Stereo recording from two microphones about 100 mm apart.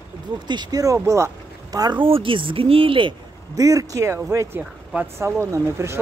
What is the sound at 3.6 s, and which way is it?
Speech, 35° right (ahead or behind).